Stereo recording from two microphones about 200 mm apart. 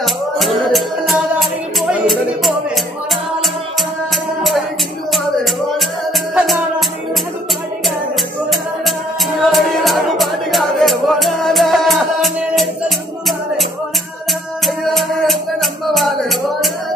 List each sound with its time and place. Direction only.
0.0 s music: centre (ahead or behind)
4.4 s music: centre (ahead or behind)
9.5 s music: centre (ahead or behind)
15.0 s music: centre (ahead or behind)